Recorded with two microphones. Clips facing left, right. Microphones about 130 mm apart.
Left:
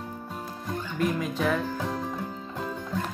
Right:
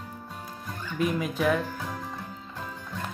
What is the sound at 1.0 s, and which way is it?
Speech, 5° right (ahead or behind).